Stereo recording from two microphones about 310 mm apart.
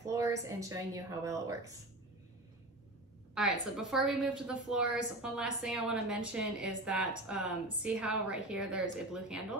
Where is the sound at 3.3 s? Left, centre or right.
Centre.